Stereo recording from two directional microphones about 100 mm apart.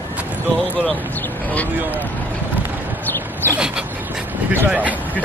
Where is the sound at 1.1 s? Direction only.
20° left (ahead or behind).